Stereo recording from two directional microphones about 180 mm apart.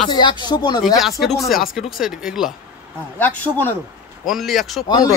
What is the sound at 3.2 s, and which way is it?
Speech, 10° left (ahead or behind).